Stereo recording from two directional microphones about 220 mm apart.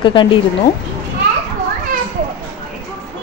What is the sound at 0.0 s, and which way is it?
Speech, 20° left (ahead or behind).